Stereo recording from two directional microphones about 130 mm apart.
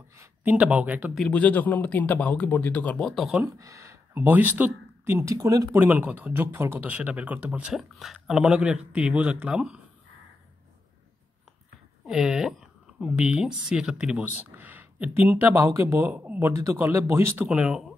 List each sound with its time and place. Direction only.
0.1 s speech: 15° right (ahead or behind)
1.1 s speech: 5° left (ahead or behind)
3.5 s speech: 25° right (ahead or behind)
5.7 s speech: 15° right (ahead or behind)
12.1 s speech: 5° right (ahead or behind)